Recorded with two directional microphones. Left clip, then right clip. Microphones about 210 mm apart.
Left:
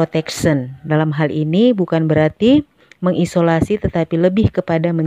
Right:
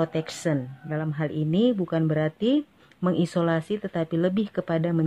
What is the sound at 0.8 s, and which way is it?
Speech, 45° left (ahead or behind).